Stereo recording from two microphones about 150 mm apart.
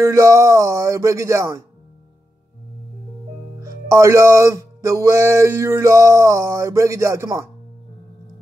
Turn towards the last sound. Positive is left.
turn(degrees=-20)  # may be behind; listen again after turning